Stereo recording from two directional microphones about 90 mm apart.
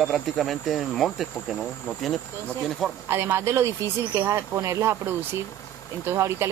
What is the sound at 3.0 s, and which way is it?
Speech, 25° right (ahead or behind).